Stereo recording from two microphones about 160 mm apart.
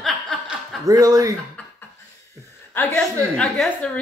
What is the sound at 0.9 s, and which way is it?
Speech, 20° right (ahead or behind).